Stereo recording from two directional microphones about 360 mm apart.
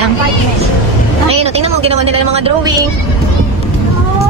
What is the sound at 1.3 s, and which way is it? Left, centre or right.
A woman's voice, centre.